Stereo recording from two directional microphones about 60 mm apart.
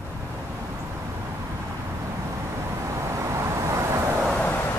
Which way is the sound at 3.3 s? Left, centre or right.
Right.